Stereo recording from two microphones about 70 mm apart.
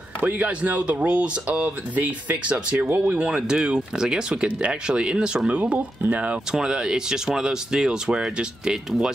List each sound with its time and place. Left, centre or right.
0.2 s speech: right
3.2 s speech: centre
6.5 s speech: centre